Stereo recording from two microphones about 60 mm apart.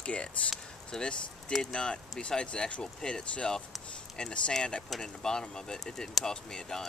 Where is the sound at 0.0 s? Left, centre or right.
Centre.